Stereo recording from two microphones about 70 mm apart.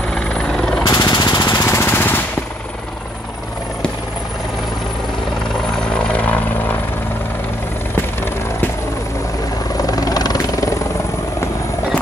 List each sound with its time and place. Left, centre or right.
0.1 s helicopter: centre
0.8 s jackhammer: left
1.6 s jackhammer: left
5.9 s vehicle: centre
9.8 s helicopter: left